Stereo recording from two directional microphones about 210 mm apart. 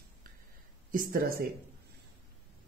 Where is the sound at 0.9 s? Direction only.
45° right (ahead or behind).